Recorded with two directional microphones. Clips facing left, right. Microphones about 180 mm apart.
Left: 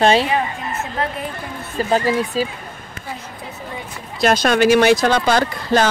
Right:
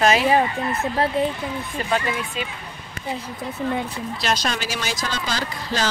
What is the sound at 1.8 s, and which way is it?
Speech, 35° left (ahead or behind).